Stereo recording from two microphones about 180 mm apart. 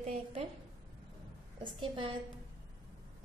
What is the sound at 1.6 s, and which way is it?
Speech, 25° right (ahead or behind).